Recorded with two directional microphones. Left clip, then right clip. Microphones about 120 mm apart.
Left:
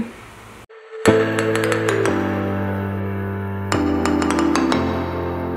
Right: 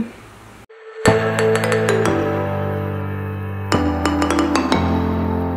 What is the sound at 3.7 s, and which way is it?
Music, centre (ahead or behind).